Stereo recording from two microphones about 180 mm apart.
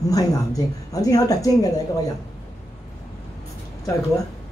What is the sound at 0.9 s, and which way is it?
Speech, 20° left (ahead or behind).